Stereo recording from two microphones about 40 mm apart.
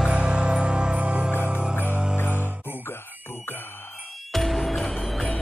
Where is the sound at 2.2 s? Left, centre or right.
Left.